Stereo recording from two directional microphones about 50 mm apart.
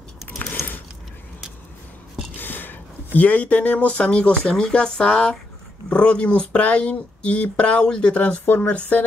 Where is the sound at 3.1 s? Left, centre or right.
Left.